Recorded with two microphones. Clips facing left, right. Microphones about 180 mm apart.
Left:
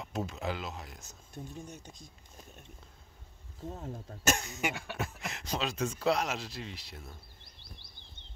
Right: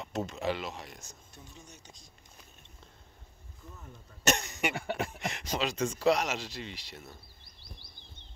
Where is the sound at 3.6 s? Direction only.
90° left.